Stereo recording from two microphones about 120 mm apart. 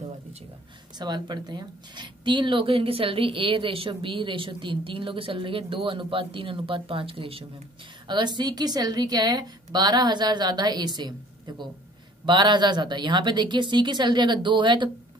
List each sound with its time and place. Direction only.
0.9 s speech: 35° right (ahead or behind)
8.1 s a woman's voice: 35° right (ahead or behind)